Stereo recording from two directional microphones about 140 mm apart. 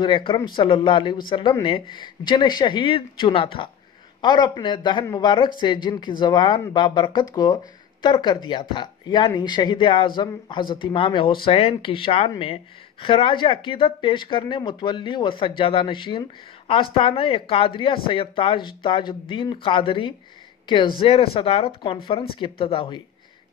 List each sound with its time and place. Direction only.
0.0 s speech: 40° left (ahead or behind)